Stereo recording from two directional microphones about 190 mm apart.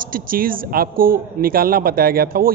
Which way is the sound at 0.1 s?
50° right (ahead or behind).